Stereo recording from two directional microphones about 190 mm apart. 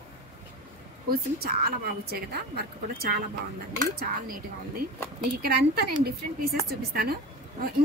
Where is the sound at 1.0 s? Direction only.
55° right (ahead or behind).